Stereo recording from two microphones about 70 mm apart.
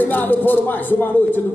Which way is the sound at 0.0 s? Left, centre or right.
Left.